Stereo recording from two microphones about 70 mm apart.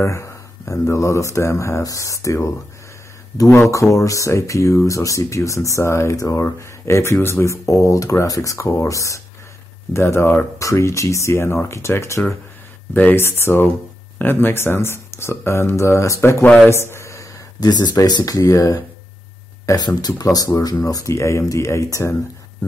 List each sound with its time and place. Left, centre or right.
0.0 s speech: left
3.7 s speech: left
6.9 s speech: left
7.4 s speech: left
9.9 s speech: left
10.6 s speech: left
12.9 s speech: left
13.2 s a man's voice: left
17.6 s speech: left
19.8 s speech: left
20.5 s speech: left